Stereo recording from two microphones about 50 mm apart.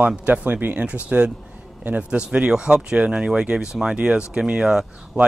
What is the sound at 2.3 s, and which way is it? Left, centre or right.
Speech, centre.